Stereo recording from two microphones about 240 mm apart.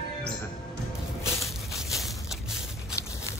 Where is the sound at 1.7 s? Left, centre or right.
Centre.